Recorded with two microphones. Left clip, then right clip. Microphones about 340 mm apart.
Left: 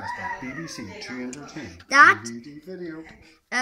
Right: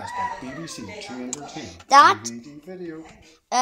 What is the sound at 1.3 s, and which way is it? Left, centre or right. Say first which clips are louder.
Speech: right 3 dB; centre.